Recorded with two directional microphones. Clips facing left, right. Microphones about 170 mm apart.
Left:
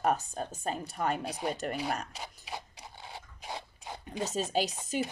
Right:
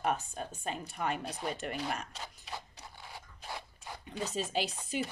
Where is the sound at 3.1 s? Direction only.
25° left (ahead or behind).